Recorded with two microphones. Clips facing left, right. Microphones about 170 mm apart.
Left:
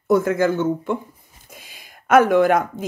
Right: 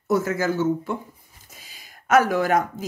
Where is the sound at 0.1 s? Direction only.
55° left (ahead or behind).